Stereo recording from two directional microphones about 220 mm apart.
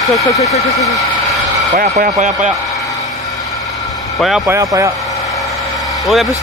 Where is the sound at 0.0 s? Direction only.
Centre (ahead or behind).